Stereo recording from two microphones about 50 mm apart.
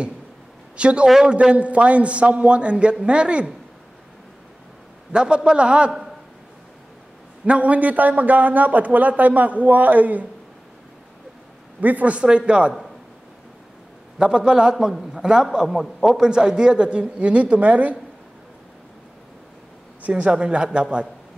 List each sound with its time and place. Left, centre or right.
0.7 s speech: right
5.1 s a man's voice: centre
7.4 s a man's voice: right
11.8 s speech: right
14.1 s a man's voice: centre
14.9 s a man's voice: centre
16.2 s speech: centre
20.0 s speech: right